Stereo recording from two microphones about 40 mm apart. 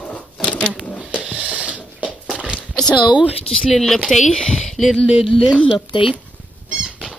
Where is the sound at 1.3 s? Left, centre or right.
Right.